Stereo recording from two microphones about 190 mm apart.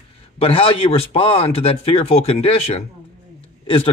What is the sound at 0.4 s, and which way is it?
A man's voice, 30° left (ahead or behind).